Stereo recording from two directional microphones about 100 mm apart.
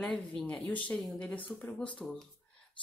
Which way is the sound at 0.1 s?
5° left (ahead or behind).